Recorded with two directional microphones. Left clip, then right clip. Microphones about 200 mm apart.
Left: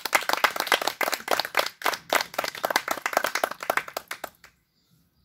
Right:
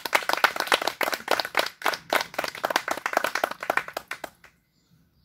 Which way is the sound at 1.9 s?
40° left (ahead or behind).